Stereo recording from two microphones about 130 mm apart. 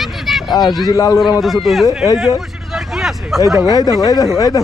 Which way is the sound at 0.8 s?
25° left (ahead or behind).